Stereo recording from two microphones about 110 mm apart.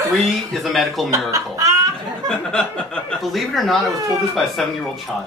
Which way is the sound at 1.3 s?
30° right (ahead or behind).